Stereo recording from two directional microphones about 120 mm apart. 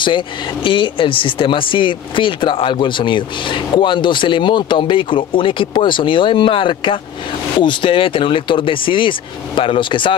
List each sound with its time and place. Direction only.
0.7 s speech: 45° left (ahead or behind)